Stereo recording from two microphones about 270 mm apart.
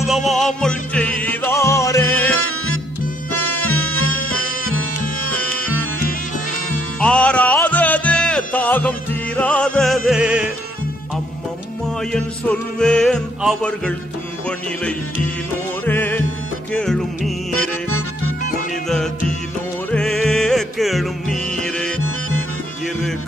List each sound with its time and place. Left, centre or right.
0.0 s music: centre
2.3 s music: left
7.0 s music: centre
12.1 s music: centre
15.8 s music: centre
17.6 s music: left
18.9 s music: centre